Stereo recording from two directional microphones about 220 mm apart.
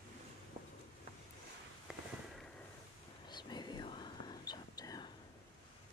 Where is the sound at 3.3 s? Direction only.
20° left (ahead or behind).